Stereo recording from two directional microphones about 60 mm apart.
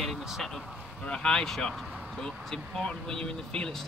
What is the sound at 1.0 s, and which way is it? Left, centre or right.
Speech, centre.